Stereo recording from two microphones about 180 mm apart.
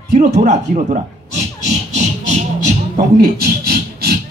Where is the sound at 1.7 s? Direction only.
40° right (ahead or behind).